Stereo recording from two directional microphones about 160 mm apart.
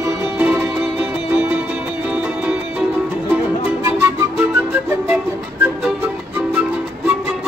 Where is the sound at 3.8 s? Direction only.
15° right (ahead or behind).